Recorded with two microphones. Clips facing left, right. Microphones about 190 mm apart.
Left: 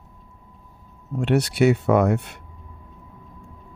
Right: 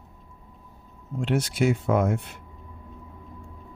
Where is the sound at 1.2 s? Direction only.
70° left (ahead or behind).